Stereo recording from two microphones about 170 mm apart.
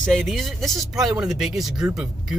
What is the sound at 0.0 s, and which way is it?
Speech, 5° left (ahead or behind).